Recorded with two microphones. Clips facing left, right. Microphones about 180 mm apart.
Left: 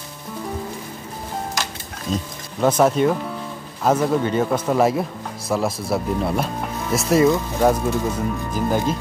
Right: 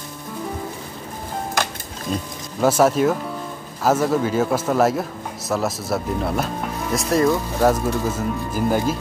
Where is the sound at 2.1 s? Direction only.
10° right (ahead or behind).